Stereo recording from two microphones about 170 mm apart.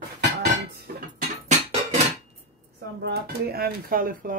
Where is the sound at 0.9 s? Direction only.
60° right (ahead or behind).